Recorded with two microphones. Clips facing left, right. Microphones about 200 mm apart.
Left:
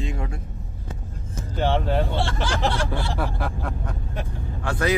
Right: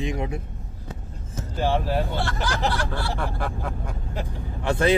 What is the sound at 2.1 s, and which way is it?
Speech, 30° left (ahead or behind).